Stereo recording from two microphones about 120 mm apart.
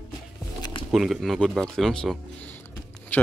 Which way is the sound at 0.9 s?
Centre (ahead or behind).